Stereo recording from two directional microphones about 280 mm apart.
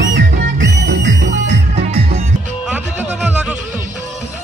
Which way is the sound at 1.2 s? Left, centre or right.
Right.